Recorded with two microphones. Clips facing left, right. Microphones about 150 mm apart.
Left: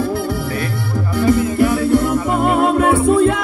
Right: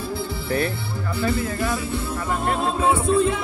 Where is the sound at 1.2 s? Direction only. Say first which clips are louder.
Left 10 dB; 85° left.